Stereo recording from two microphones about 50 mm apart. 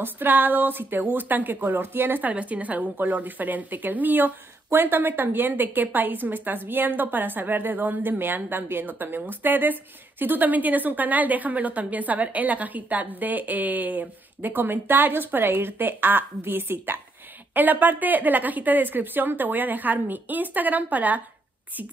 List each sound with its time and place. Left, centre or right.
0.0 s a woman's voice: right
2.3 s a woman's voice: right
17.6 s a woman's voice: right